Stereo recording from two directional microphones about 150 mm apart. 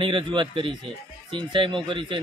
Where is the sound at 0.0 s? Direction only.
35° right (ahead or behind).